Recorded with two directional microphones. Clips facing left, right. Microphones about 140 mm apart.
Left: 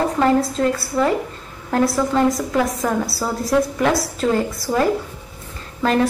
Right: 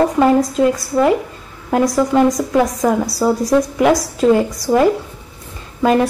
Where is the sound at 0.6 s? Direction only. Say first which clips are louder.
Right 4 dB; 15° right (ahead or behind).